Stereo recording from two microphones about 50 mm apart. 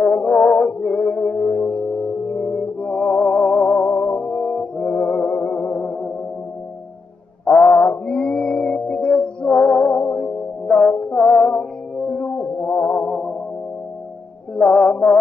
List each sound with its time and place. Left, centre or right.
0.0 s music: centre
7.4 s mantra: left
7.7 s mantra: left
8.1 s music: left
11.0 s music: left
12.5 s music: left
13.1 s music: centre
14.5 s music: left